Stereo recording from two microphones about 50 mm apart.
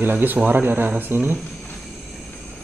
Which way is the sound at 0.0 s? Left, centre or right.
Right.